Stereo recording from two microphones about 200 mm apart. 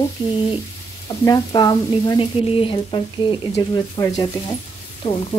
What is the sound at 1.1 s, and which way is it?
A woman's voice, 20° left (ahead or behind).